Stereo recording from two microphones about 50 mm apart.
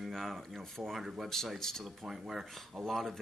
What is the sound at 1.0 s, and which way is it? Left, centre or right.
Speech, centre.